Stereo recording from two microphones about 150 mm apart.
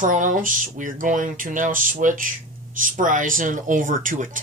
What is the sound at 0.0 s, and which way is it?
Speech, 60° right (ahead or behind).